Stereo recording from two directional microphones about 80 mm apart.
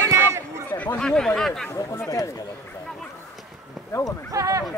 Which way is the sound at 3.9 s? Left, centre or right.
Left.